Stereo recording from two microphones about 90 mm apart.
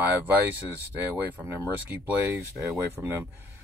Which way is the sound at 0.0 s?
20° right (ahead or behind).